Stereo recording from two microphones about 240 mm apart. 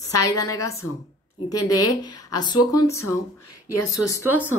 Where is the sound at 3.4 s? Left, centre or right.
Left.